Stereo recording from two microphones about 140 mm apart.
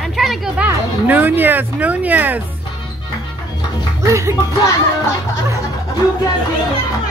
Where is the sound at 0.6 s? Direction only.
10° right (ahead or behind).